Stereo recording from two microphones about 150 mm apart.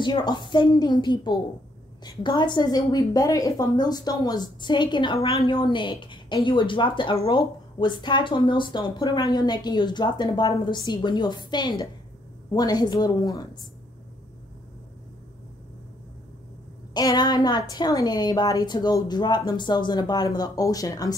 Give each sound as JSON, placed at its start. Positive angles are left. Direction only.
{"t": 0.0, "sound": "a woman's voice", "side_deg": 30}
{"t": 16.9, "sound": "a woman's voice", "side_deg": 25}